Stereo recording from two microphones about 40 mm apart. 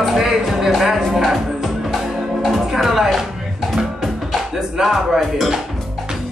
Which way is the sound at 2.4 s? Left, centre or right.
Centre.